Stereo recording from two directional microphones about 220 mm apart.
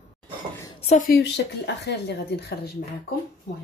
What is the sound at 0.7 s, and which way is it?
A woman's voice, 30° left (ahead or behind).